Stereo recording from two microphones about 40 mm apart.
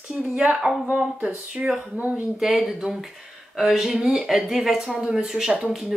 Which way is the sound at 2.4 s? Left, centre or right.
Centre.